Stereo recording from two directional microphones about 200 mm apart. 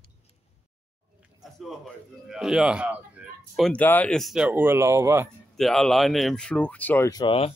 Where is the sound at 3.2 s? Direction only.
5° right (ahead or behind).